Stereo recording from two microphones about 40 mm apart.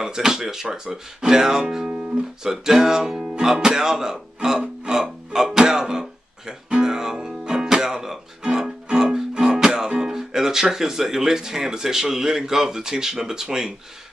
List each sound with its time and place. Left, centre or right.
0.0 s speech: centre
2.4 s music: centre
8.8 s speech: centre